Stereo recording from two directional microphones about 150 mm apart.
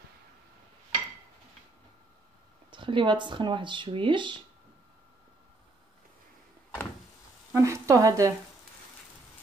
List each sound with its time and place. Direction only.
2.7 s speech: 35° right (ahead or behind)
7.5 s speech: 20° right (ahead or behind)